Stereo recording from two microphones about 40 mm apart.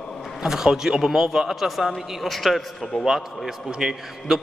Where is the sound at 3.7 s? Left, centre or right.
Centre.